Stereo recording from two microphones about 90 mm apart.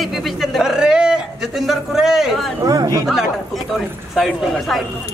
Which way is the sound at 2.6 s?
45° right (ahead or behind).